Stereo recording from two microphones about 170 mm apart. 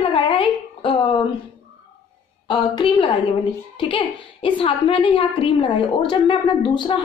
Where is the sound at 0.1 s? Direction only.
30° left (ahead or behind).